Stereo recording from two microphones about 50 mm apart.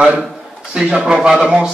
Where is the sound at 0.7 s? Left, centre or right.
Centre.